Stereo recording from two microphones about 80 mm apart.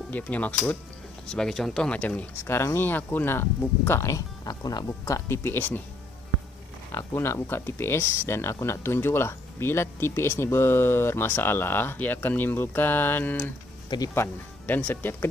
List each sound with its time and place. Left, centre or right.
0.1 s speech: centre
1.2 s speech: centre
2.4 s speech: left
5.4 s speech: left
6.9 s speech: left
13.8 s speech: left
14.1 s speech: left